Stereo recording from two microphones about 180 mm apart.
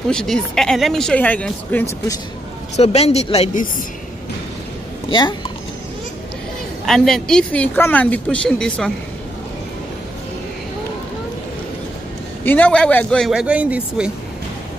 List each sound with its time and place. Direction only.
0.1 s speech: 5° left (ahead or behind)
2.7 s speech: 35° left (ahead or behind)
6.9 s speech: centre (ahead or behind)
12.4 s speech: 10° left (ahead or behind)
13.3 s speech: 5° right (ahead or behind)